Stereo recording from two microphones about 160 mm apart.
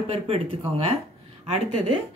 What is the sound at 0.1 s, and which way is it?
Speech, 40° right (ahead or behind).